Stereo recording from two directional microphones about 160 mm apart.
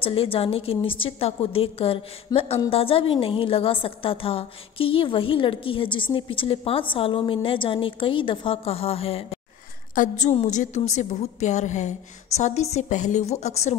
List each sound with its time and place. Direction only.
0.0 s a woman's voice: 35° left (ahead or behind)
9.9 s a woman's voice: 50° left (ahead or behind)